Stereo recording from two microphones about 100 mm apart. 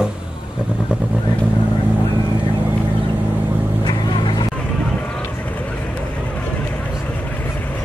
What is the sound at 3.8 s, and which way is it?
Vehicle, 55° left (ahead or behind).